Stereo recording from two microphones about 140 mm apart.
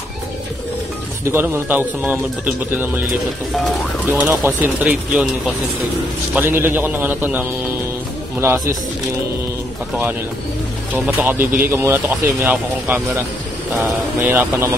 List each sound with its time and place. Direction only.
1.2 s speech: 15° right (ahead or behind)
4.1 s speech: 15° right (ahead or behind)
6.3 s speech: 15° right (ahead or behind)
10.9 s speech: 10° right (ahead or behind)
14.2 s speech: 15° right (ahead or behind)